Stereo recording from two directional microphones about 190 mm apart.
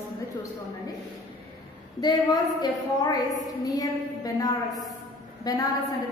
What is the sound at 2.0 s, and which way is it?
A woman's voice, 20° left (ahead or behind).